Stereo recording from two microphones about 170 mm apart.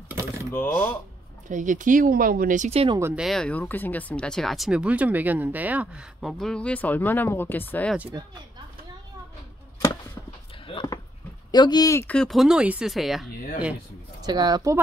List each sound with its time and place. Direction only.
0.5 s speech: 15° left (ahead or behind)
1.5 s speech: 50° right (ahead or behind)
3.0 s speech: 15° right (ahead or behind)
3.3 s speech: 5° left (ahead or behind)
8.1 s speech: 25° right (ahead or behind)
10.7 s a sound: 25° left (ahead or behind)
11.5 s speech: 25° left (ahead or behind); by 13.3 s centre (ahead or behind)
14.2 s speech: 25° right (ahead or behind)